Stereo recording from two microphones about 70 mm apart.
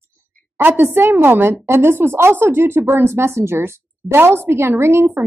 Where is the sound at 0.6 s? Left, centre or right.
Right.